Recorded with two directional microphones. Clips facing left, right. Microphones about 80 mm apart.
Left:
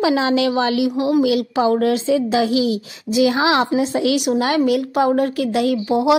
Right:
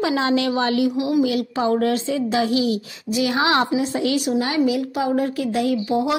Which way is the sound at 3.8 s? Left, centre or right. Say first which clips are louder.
Left 3 dB; left.